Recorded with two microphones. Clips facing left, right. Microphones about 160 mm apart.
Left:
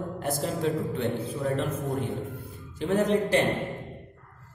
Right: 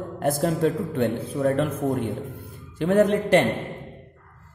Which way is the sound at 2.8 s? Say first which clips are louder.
Right 5 dB; 60° right (ahead or behind).